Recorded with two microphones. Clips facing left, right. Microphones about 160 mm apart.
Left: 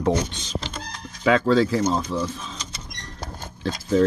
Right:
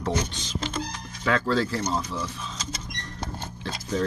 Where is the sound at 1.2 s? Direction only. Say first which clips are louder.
Left 6 dB; 15° left (ahead or behind).